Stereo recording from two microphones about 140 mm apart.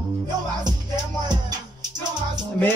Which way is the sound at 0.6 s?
30° right (ahead or behind).